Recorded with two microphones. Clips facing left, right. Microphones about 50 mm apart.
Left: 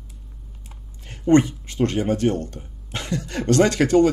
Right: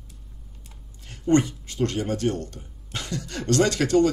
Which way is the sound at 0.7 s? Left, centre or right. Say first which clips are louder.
Left 3 dB; left.